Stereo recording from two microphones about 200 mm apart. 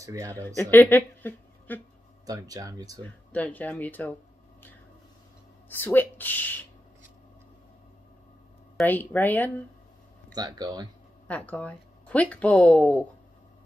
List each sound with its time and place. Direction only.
0.0 s speech: 15° right (ahead or behind)
0.6 s a woman's voice: 10° left (ahead or behind)
2.2 s speech: 15° right (ahead or behind)
3.0 s speech: 10° left (ahead or behind)
5.7 s speech: 10° left (ahead or behind)
8.7 s speech: 10° left (ahead or behind)
10.3 s speech: 20° right (ahead or behind)
11.2 s speech: 5° left (ahead or behind)